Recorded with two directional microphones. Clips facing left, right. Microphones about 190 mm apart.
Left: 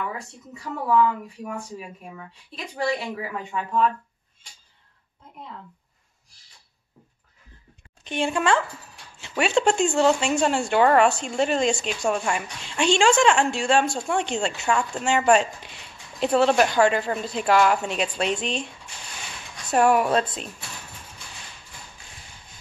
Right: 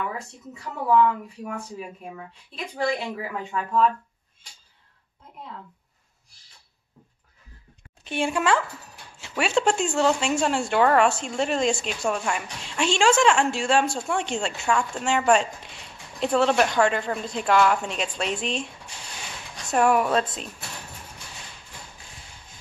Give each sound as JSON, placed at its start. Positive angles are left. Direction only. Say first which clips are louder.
{"t": 0.8, "sound": "speech", "louder": "right 1 dB", "side_deg": 0}
{"t": 8.0, "sound": "a woman's voice", "louder": "left 1 dB", "side_deg": -5}
{"t": 19.7, "sound": "speech", "louder": "left 1 dB", "side_deg": 0}